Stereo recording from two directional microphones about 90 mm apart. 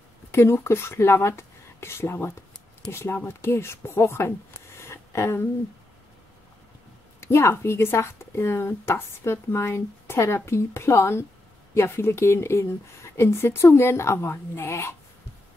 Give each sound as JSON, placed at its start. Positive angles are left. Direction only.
{"t": 0.3, "sound": "speech", "side_deg": 30}
{"t": 4.8, "sound": "a sound", "side_deg": 30}
{"t": 7.2, "sound": "speech", "side_deg": 30}